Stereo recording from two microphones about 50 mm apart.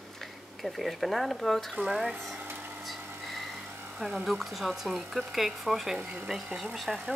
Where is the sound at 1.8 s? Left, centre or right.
Centre.